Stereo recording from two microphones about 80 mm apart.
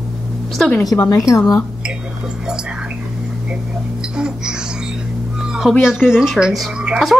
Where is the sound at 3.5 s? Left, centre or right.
Centre.